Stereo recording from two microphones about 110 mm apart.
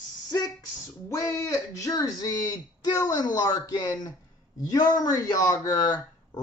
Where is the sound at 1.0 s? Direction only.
30° left (ahead or behind).